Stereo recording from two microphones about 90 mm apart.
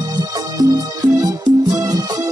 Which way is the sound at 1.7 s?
40° right (ahead or behind).